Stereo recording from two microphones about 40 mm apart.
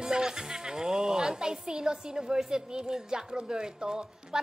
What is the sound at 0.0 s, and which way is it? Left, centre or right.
A child's voice, centre.